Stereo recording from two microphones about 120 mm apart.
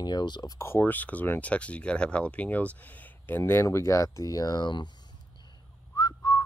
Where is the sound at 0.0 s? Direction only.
35° left (ahead or behind).